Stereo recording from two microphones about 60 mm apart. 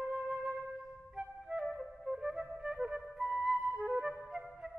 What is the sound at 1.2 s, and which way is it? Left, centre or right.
Flute, centre.